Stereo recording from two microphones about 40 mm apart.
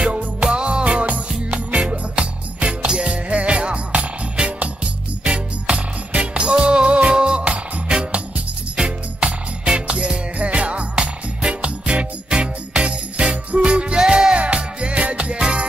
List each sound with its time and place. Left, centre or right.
0.0 s music: right
9.7 s music: right
14.0 s music: centre
14.3 s music: right